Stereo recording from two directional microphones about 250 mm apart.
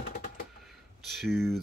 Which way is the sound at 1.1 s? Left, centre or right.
Centre.